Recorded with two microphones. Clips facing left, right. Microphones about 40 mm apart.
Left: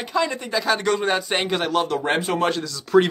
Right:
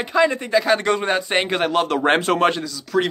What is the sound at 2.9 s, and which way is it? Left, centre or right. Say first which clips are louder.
Speech: left 4 dB; centre.